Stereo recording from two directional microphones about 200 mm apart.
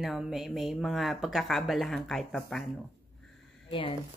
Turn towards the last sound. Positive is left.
turn(degrees=25)  # may be behind; listen again after turning